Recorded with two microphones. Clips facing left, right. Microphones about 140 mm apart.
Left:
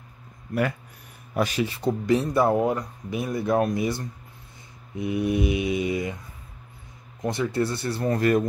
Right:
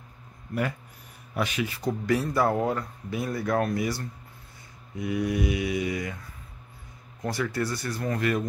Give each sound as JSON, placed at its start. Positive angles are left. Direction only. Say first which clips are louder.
{"t": 1.3, "sound": "speech", "louder": "left 4 dB", "side_deg": 40}
{"t": 7.2, "sound": "speech", "louder": "left 4 dB", "side_deg": 20}